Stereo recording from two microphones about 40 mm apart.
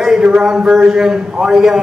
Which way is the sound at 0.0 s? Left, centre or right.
Centre.